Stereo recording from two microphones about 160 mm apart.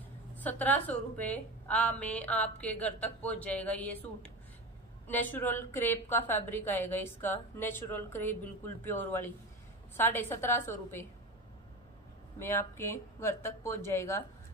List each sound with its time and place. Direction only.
0.4 s a woman's voice: 10° left (ahead or behind)
12.4 s a woman's voice: 15° left (ahead or behind)